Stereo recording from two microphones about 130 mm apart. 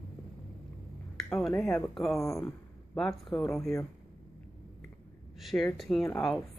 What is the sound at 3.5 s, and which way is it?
Speech, 20° left (ahead or behind).